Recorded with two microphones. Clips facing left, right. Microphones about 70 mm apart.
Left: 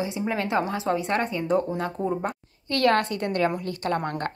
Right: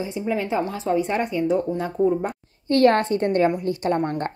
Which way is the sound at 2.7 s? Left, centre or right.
Right.